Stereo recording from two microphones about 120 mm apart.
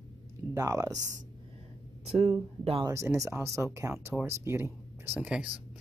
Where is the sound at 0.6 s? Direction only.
30° right (ahead or behind).